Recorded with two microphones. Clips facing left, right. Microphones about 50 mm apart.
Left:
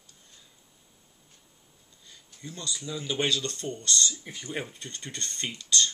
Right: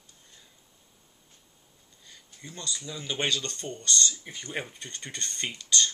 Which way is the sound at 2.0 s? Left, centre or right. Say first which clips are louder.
Left 3 dB; centre.